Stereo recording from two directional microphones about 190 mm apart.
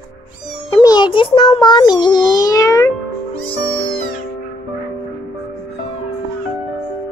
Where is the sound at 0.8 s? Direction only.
25° left (ahead or behind).